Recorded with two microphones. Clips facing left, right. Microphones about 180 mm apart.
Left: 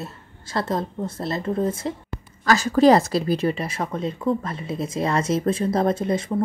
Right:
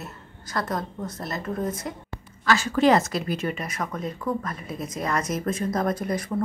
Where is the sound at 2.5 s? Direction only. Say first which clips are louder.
Left 4 dB; 40° left (ahead or behind).